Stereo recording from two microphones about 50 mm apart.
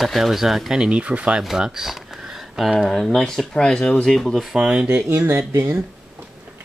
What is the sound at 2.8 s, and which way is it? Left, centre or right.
Speech, centre.